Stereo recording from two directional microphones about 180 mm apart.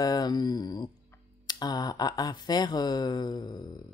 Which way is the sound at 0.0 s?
20° left (ahead or behind).